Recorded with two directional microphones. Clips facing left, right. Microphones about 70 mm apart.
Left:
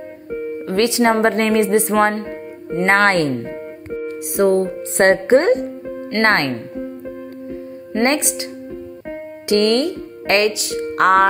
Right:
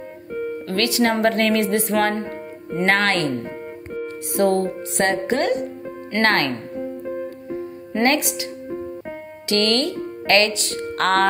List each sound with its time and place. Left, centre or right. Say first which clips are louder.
0.7 s speech: left 5 dB; left
4.4 s speech: left 3 dB; left
4.9 s speech: left 8 dB; left
8.0 s speech: left 1 dB; left
9.5 s speech: left 5 dB; left
10.5 s speech: left 4 dB; centre